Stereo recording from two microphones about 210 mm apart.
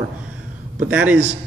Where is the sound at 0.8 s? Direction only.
5° right (ahead or behind).